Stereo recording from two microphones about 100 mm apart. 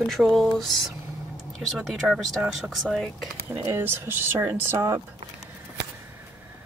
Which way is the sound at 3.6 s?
25° right (ahead or behind).